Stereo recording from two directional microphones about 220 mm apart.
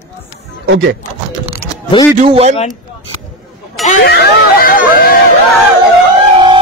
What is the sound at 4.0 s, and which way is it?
Speech, 45° left (ahead or behind).